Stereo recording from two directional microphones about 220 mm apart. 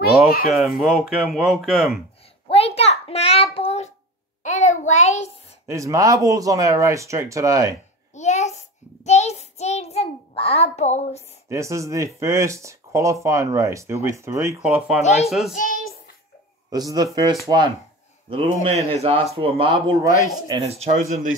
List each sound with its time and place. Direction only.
0.5 s speech: centre (ahead or behind)
2.4 s a sound: 25° left (ahead or behind)
3.5 s child singing: 30° left (ahead or behind)
5.7 s speech: 15° right (ahead or behind)
8.1 s child singing: 30° left (ahead or behind)
11.4 s speech: 15° right (ahead or behind)
15.0 s speech: 30° left (ahead or behind)
15.2 s speech: centre (ahead or behind)
16.7 s speech: 15° right (ahead or behind); by 21.4 s 35° right (ahead or behind)